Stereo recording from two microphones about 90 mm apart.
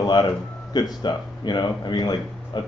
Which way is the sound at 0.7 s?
55° left (ahead or behind).